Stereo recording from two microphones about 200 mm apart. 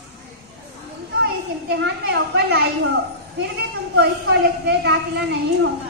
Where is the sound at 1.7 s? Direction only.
55° right (ahead or behind).